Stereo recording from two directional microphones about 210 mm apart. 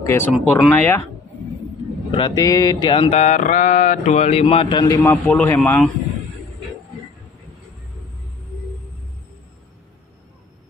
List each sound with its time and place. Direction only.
0.0 s a man's voice: 10° left (ahead or behind)
2.0 s mantra: 25° left (ahead or behind)
5.0 s a man's voice: 5° left (ahead or behind)